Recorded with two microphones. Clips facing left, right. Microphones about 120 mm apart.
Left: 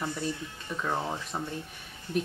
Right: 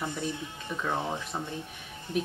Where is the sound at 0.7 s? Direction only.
10° left (ahead or behind).